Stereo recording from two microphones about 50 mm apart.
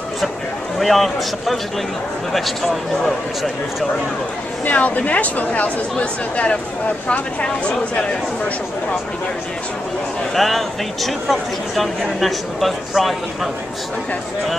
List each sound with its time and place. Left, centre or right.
0.7 s speech: centre
4.6 s speech: left
10.3 s speech: centre